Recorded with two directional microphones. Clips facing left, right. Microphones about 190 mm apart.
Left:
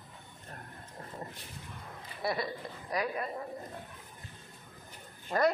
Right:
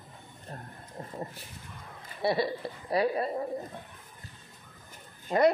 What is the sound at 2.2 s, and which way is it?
A woman's voice, 30° right (ahead or behind).